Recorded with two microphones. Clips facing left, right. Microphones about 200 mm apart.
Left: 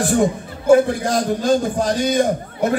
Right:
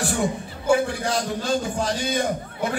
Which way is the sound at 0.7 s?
50° left (ahead or behind).